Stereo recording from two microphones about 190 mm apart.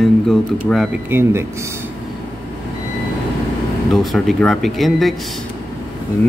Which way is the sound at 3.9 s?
Centre (ahead or behind).